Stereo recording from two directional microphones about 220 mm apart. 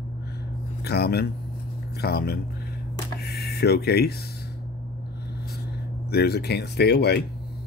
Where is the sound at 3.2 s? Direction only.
45° left (ahead or behind).